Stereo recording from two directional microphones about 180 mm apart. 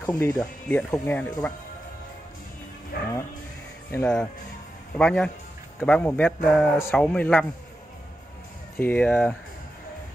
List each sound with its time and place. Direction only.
0.0 s speech: 10° left (ahead or behind)
2.9 s music: 55° left (ahead or behind)
3.9 s speech: 5° left (ahead or behind)
8.7 s speech: 10° left (ahead or behind)